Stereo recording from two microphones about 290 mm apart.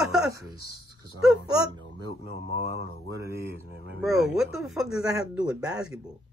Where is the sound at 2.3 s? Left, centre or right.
Left.